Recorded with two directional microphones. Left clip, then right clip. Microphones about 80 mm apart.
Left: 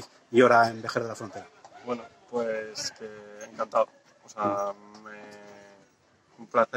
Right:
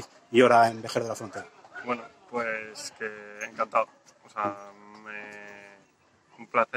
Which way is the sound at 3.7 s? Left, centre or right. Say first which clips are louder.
Left 4 dB; left.